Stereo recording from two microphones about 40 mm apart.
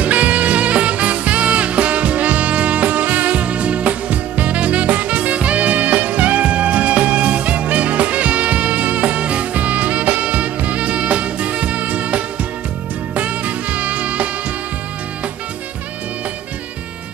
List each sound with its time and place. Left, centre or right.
0.0 s music: right